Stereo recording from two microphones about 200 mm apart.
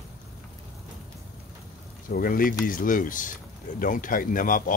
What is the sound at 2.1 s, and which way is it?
Speech, 45° left (ahead or behind).